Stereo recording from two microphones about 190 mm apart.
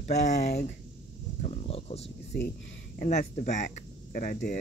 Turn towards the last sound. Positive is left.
turn(degrees=50)  # may be behind; listen again after turning